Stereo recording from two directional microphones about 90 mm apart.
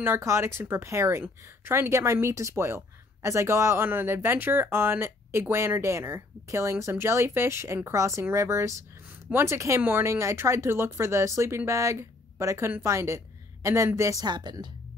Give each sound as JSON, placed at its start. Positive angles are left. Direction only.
{"t": 0.0, "sound": "speech", "side_deg": -30}
{"t": 14.2, "sound": "speech", "side_deg": -55}